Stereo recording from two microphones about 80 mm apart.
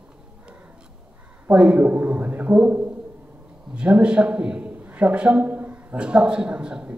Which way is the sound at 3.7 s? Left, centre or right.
Centre.